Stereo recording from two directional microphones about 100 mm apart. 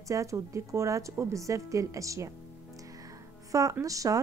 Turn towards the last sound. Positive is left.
turn(degrees=-35)  # may be behind; listen again after turning